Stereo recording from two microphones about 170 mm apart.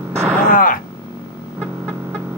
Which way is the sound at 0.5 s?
55° left (ahead or behind).